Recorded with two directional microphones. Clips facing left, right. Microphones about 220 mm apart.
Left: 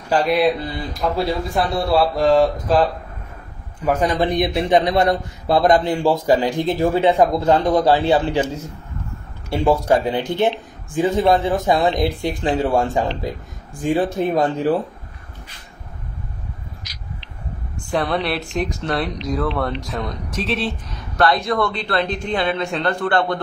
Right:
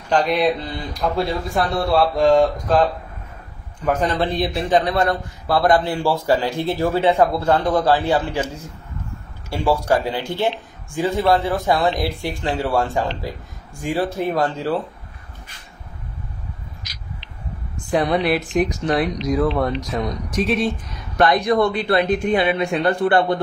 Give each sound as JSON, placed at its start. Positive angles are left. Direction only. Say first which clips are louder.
{"t": 0.1, "sound": "speech", "louder": "left 1 dB", "side_deg": 5}
{"t": 3.8, "sound": "a man's voice", "louder": "left 1 dB", "side_deg": 10}
{"t": 17.7, "sound": "a sound", "louder": "right 2 dB", "side_deg": -20}
{"t": 18.1, "sound": "speech", "louder": "right 3 dB", "side_deg": 0}
{"t": 18.4, "sound": "a woman's voice", "louder": "right 4 dB", "side_deg": -20}